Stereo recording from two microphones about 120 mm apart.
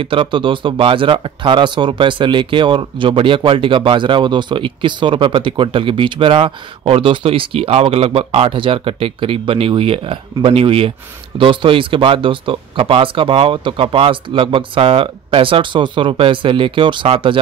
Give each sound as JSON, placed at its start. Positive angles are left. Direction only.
{"t": 0.0, "sound": "speech", "side_deg": -45}